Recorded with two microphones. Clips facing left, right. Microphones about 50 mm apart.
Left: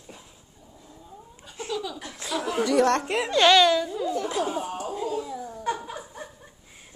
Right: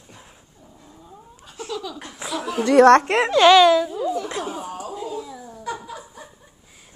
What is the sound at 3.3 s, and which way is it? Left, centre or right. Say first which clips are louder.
Speech: right 5 dB; centre.